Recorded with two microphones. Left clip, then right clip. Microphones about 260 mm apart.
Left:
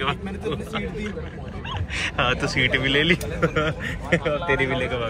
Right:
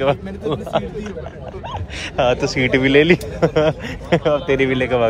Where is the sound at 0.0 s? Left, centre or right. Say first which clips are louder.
Right 7 dB; centre.